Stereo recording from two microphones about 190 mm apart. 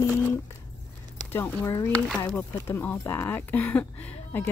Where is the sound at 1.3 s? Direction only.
15° left (ahead or behind).